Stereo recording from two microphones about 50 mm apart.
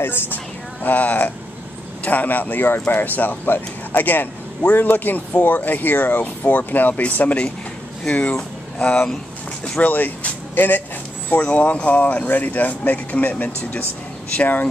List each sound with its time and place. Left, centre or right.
0.0 s speech: left
0.8 s speech: left
9.8 s speech: left
11.5 s speech: left